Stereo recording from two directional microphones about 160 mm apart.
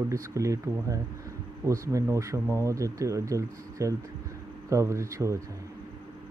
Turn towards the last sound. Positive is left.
turn(degrees=-20)  # may be behind; listen again after turning